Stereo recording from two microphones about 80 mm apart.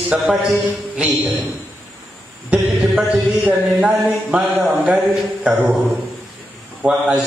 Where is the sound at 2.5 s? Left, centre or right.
Centre.